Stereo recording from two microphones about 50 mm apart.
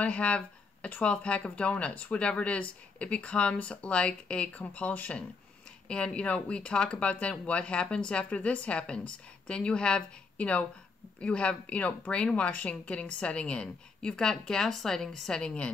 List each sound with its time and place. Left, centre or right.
0.0 s speech: left